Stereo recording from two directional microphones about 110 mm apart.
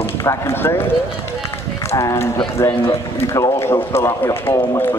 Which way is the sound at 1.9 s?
25° left (ahead or behind).